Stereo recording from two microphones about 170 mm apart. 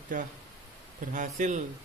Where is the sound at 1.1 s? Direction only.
50° right (ahead or behind).